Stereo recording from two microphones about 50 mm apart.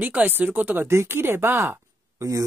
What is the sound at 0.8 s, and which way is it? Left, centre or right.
Speech, right.